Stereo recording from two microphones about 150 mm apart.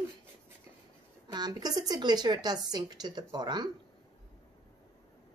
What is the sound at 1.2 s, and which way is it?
Speech, 25° right (ahead or behind).